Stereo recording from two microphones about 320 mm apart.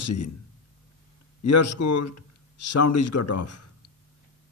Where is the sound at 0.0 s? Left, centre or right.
Left.